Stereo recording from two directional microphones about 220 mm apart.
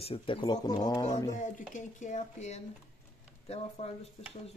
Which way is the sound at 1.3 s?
35° left (ahead or behind).